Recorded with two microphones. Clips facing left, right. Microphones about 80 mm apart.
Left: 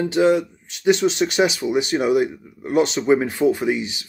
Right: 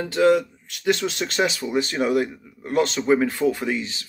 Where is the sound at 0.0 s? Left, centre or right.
Centre.